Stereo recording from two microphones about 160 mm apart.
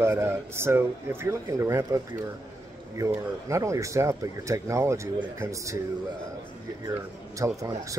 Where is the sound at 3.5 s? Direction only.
20° right (ahead or behind).